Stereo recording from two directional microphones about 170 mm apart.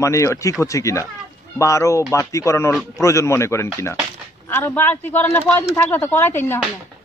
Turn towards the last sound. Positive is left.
turn(degrees=15)  # may be behind; listen again after turning